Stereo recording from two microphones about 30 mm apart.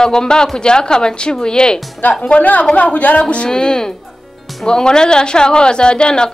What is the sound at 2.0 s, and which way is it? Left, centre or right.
Speech, left.